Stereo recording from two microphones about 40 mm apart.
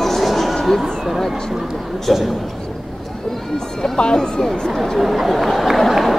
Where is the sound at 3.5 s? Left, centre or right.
Centre.